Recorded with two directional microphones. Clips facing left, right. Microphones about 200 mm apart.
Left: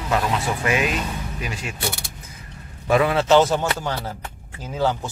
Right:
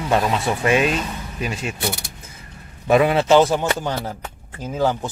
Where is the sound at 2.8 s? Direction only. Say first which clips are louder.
Right 3 dB; 20° right (ahead or behind).